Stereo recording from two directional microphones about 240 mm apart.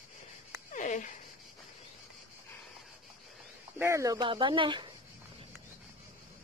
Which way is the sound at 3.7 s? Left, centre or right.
Centre.